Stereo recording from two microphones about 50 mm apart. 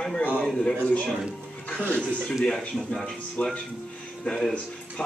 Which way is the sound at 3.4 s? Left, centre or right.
Left.